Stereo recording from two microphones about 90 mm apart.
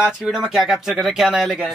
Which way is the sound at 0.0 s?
5° right (ahead or behind).